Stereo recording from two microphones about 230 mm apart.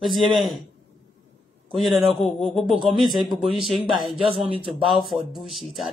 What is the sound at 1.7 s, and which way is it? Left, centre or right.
Speech, centre.